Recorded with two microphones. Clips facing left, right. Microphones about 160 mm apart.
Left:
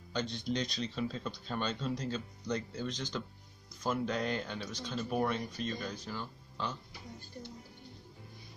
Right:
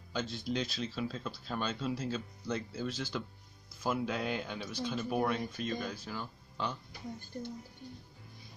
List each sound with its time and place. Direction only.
0.1 s speech: 5° right (ahead or behind)